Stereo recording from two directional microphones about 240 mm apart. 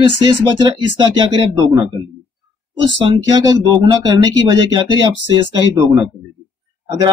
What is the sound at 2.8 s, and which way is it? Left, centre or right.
Speech, centre.